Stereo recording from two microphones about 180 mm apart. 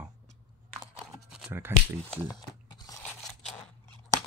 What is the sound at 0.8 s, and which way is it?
Scissors, 20° right (ahead or behind).